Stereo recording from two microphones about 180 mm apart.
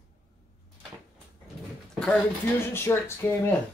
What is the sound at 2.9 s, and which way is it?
Speech, 15° left (ahead or behind).